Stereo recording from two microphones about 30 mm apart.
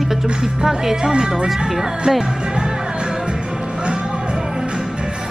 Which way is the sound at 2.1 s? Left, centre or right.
Right.